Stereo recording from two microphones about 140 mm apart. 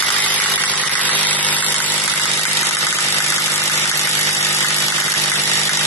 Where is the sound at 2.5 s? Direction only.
20° left (ahead or behind).